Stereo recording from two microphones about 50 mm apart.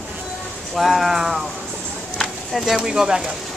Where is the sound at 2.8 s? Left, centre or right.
Centre.